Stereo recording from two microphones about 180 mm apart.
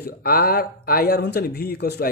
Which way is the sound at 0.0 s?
55° left (ahead or behind).